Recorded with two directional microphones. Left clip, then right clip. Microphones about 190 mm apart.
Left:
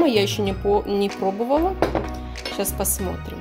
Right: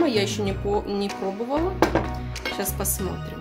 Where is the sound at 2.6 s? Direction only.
25° left (ahead or behind).